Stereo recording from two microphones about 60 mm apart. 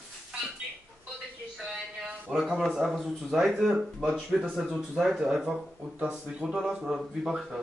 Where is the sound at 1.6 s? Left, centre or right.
Centre.